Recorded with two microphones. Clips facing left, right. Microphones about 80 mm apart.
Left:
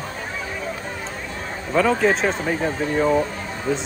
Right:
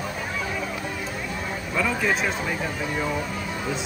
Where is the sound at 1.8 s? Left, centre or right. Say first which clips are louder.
Left 6 dB; left.